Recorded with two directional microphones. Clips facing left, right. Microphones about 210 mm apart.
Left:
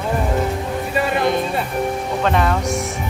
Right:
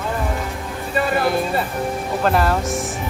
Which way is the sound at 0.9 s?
5° right (ahead or behind).